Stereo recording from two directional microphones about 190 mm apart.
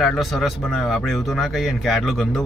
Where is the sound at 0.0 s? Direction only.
Centre (ahead or behind).